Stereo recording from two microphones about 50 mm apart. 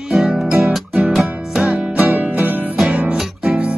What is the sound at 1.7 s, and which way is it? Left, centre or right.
Music, right.